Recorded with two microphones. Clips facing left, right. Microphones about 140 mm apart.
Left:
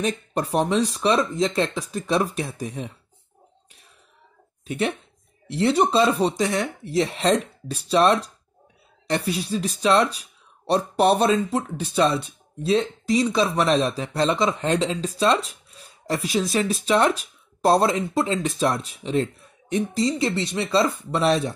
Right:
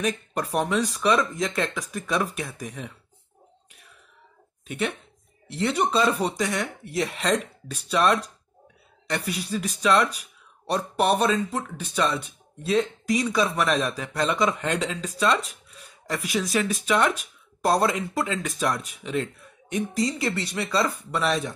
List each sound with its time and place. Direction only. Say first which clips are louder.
0.0 s speech: left 2 dB; 30° left (ahead or behind)
4.6 s speech: left 4 dB; 35° left (ahead or behind)